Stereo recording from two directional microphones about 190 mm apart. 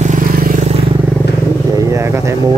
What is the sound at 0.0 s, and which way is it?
Vehicle, 45° right (ahead or behind).